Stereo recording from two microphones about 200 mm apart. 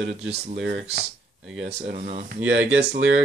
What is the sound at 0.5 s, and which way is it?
Speech, 65° right (ahead or behind).